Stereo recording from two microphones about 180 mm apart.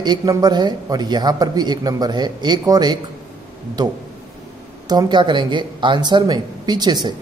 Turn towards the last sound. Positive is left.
turn(degrees=-25)  # may be behind; listen again after turning